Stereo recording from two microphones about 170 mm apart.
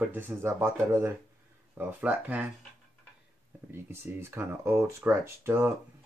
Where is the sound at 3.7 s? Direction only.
15° right (ahead or behind).